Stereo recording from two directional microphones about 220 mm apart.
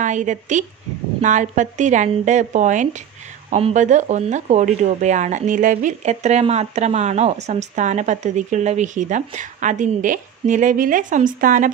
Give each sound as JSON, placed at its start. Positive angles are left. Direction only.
{"t": 0.0, "sound": "speech", "side_deg": -35}